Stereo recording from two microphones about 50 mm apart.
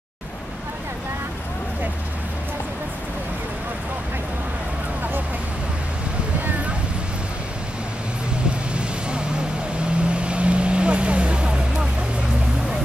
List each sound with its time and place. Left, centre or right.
10.0 s vehicle: right